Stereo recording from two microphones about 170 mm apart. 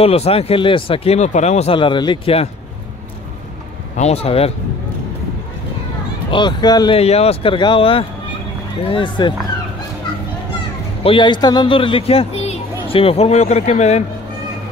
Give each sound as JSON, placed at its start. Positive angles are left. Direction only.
{"t": 0.0, "sound": "speech", "side_deg": 35}
{"t": 3.9, "sound": "speech", "side_deg": 40}
{"t": 6.3, "sound": "speech", "side_deg": 25}
{"t": 7.0, "sound": "speech", "side_deg": 35}
{"t": 11.1, "sound": "speech", "side_deg": 30}